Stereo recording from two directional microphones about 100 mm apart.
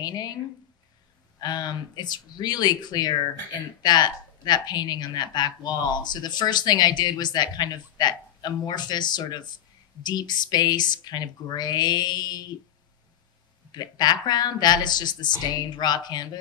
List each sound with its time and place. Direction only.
0.0 s speech: 45° left (ahead or behind)
1.4 s speech: 45° left (ahead or behind)
13.7 s speech: 45° left (ahead or behind)